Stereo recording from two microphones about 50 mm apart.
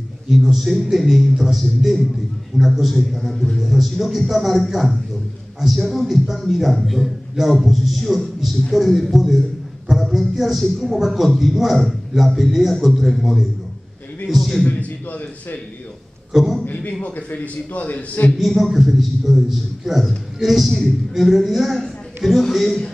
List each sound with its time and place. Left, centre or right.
0.4 s a woman's voice: centre
8.0 s a woman's voice: centre
14.8 s a man's voice: left
16.3 s a woman's voice: centre
16.6 s a man's voice: left
18.4 s a woman's voice: centre